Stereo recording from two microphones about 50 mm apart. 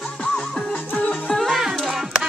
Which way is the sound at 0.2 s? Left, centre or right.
Left.